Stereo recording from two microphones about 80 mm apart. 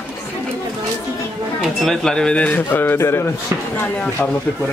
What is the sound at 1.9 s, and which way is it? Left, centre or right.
A man's voice, centre.